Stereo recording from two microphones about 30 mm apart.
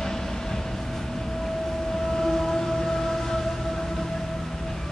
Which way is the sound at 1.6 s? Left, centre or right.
Centre.